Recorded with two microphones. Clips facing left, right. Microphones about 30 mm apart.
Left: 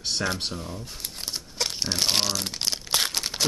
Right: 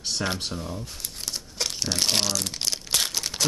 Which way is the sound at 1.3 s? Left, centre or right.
Centre.